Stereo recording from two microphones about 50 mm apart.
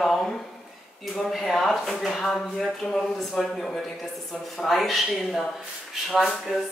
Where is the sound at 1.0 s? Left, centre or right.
Centre.